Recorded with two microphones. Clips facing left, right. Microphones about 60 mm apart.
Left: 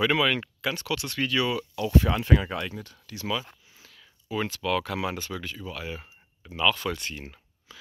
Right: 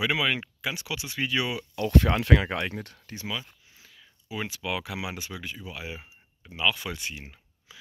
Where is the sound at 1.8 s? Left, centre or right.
Right.